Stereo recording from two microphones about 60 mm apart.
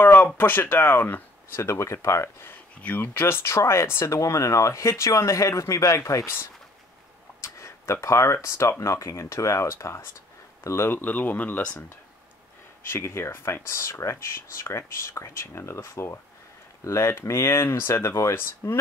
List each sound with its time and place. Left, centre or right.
0.0 s a sound: left
0.4 s speech: left
2.8 s speech: left
3.1 s speech: left
7.4 s speech: left
12.8 s speech: left